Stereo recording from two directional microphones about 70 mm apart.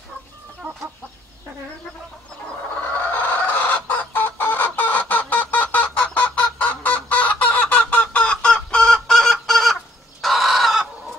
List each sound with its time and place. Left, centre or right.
3.1 s chicken: left; by 10.9 s centre